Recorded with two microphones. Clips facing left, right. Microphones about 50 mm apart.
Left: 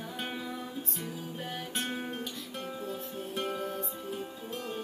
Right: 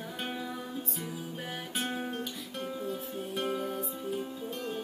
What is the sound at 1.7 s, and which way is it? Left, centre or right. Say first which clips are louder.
Music: right 3 dB; centre.